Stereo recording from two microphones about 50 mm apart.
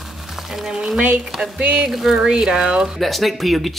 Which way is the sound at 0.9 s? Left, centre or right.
Right.